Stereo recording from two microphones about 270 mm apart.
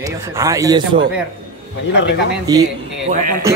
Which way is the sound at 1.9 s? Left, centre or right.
Left.